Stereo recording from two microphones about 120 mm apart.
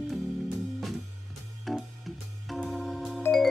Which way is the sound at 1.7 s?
Centre (ahead or behind).